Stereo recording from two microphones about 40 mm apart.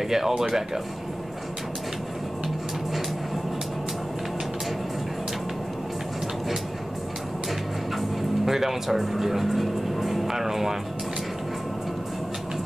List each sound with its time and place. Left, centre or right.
0.0 s speech: centre
8.5 s speech: centre